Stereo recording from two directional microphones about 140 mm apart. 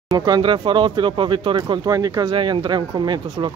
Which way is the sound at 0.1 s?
30° right (ahead or behind).